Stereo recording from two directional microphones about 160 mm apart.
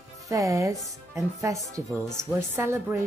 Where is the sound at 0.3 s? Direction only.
20° right (ahead or behind).